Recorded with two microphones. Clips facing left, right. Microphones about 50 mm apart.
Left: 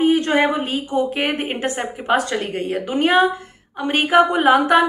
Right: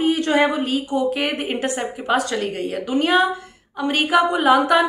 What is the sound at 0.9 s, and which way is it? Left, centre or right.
A woman's voice, left.